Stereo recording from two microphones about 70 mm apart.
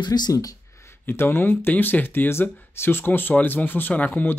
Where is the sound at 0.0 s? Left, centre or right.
Left.